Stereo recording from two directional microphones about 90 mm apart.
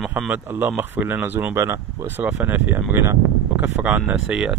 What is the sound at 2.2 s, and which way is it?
Speech, 20° right (ahead or behind).